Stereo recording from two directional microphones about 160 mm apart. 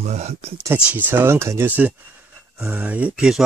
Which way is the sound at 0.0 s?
45° right (ahead or behind).